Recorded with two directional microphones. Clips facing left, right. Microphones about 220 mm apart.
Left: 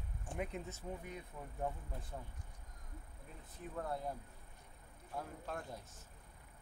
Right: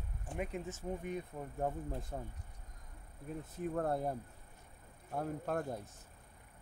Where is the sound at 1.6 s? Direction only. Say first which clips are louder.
Right 5 dB; 45° right (ahead or behind).